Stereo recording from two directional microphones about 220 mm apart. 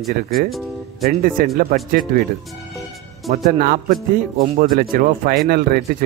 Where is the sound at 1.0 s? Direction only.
40° right (ahead or behind).